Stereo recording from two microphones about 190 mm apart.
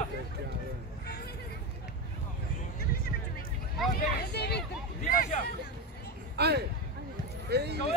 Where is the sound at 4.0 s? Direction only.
55° left (ahead or behind).